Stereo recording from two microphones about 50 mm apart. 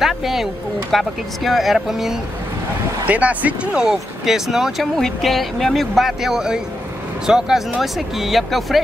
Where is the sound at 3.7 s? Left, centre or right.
Centre.